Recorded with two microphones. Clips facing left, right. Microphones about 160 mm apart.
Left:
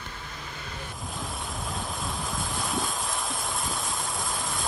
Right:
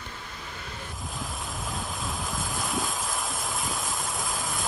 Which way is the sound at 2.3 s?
Centre (ahead or behind).